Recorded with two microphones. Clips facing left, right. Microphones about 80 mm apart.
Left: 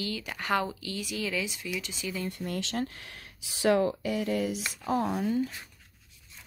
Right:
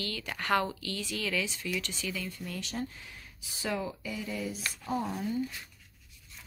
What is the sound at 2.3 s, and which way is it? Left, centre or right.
Speech, left.